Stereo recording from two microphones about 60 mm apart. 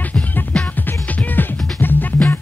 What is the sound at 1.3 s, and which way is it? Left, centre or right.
Music, left.